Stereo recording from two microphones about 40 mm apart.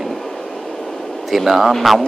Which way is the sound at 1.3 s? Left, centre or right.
Centre.